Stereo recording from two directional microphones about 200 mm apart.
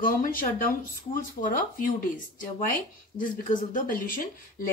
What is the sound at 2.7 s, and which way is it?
Speech, 45° left (ahead or behind).